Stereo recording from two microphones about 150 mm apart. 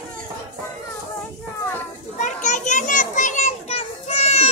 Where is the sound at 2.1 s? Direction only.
55° left (ahead or behind).